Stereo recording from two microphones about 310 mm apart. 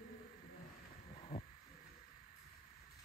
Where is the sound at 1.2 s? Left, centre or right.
Centre.